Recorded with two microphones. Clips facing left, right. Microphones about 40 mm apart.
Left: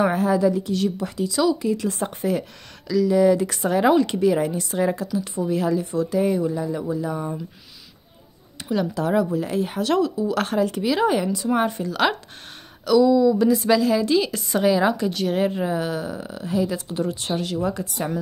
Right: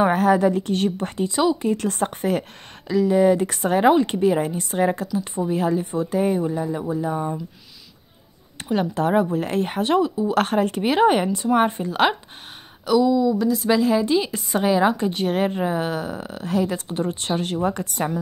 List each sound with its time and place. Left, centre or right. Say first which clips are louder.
0.0 s a woman's voice: right 2 dB; right
1.7 s a woman's voice: right 1 dB; right
6.7 s a woman's voice: right 1 dB; right
8.5 s speech: right 1 dB; right
9.8 s a woman's voice: right 1 dB; right
10.3 s speech: right 2 dB; right
12.8 s speech: left 2 dB; centre
13.4 s a woman's voice: left 3 dB; centre
13.7 s a woman's voice: even; right